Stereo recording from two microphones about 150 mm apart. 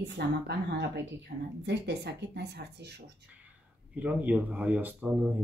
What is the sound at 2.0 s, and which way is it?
Speech, 90° right.